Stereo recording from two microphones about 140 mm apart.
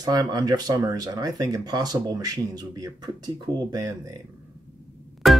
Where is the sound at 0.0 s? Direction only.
25° right (ahead or behind).